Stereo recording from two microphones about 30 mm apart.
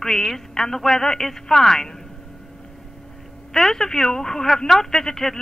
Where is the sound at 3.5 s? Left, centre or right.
Centre.